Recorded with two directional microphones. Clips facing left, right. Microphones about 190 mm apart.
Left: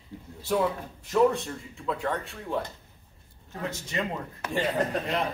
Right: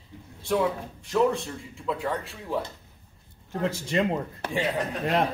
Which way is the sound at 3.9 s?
30° right (ahead or behind).